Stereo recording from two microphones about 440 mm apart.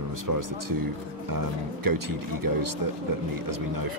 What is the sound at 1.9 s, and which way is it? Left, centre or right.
Speech, right.